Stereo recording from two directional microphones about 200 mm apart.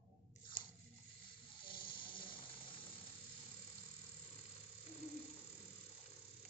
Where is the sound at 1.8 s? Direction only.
25° left (ahead or behind).